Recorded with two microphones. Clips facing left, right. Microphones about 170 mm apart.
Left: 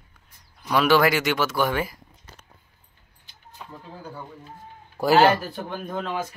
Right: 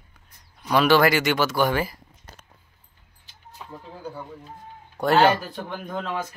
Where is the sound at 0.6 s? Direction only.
Centre (ahead or behind).